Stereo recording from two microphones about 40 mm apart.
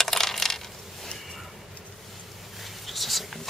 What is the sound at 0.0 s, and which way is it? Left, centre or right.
Coin, centre.